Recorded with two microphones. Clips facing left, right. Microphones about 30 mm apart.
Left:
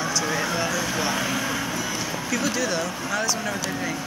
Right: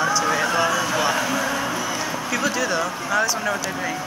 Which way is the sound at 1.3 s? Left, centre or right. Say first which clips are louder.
Right 3 dB; right.